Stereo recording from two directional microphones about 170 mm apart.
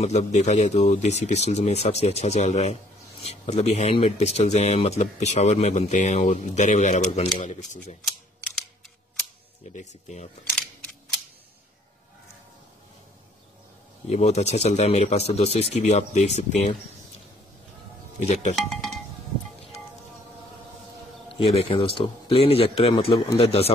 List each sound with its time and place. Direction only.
0.0 s speech: 40° left (ahead or behind)
9.7 s speech: 45° left (ahead or behind)
14.0 s speech: 40° left (ahead or behind)
18.2 s speech: 40° left (ahead or behind)
18.7 s a sound: centre (ahead or behind)
21.3 s speech: 35° left (ahead or behind)